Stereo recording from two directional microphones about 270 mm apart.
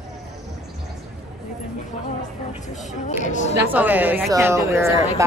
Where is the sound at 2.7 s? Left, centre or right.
Left.